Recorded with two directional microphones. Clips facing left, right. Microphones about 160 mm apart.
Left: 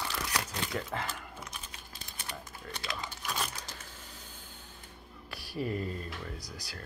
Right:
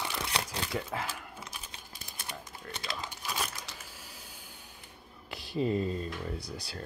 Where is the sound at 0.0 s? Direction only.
20° right (ahead or behind).